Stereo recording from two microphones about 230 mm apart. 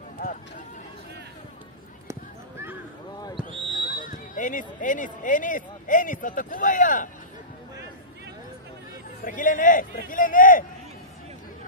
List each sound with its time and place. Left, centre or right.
0.2 s a sound: left
3.4 s basketball bounce: right
3.7 s speech: left
9.2 s a man's voice: left